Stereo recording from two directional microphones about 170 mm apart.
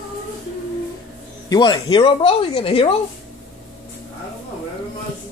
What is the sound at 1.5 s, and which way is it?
Speech, 25° left (ahead or behind).